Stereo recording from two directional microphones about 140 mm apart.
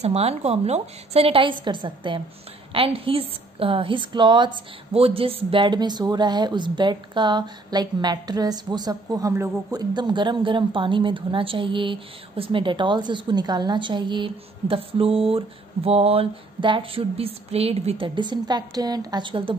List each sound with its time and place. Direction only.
0.0 s a woman's voice: 50° right (ahead or behind)